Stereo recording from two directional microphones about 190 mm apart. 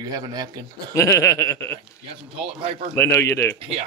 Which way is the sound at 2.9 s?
15° left (ahead or behind).